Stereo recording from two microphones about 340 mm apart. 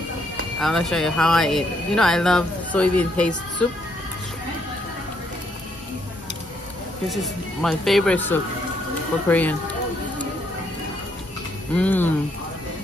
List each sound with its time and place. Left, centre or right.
0.6 s speech: centre
7.6 s speech: centre
11.7 s speech: centre